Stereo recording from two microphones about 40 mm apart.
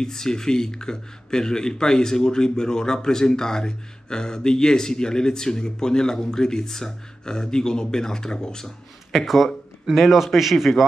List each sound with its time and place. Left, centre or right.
0.0 s speech: centre
9.2 s a man's voice: centre